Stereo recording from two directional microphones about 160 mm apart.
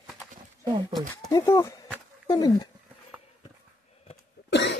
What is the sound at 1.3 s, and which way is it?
Speech, 25° left (ahead or behind).